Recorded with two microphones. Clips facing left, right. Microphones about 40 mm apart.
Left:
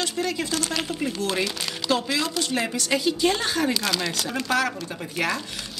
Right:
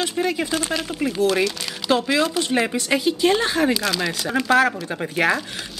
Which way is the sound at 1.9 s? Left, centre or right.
Centre.